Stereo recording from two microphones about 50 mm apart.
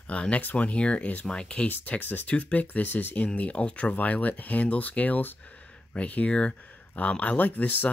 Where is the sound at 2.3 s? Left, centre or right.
Left.